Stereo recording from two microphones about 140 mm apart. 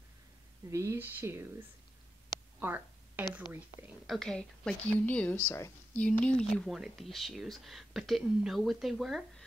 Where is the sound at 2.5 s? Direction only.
15° right (ahead or behind).